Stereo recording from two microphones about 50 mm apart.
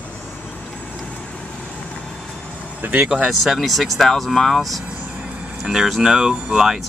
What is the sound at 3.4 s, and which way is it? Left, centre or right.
Speech, centre.